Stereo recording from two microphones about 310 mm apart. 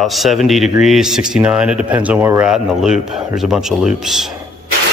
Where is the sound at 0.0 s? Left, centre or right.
Centre.